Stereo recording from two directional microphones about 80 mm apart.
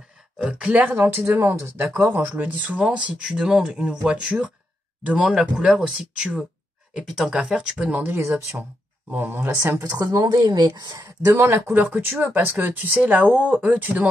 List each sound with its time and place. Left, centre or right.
0.4 s speech: centre
0.9 s speech: right; by 8.1 s centre
8.1 s speech: right
9.8 s speech: right
11.2 s speech: right